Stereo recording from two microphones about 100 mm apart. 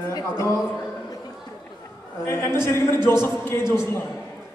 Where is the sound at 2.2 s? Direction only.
25° left (ahead or behind).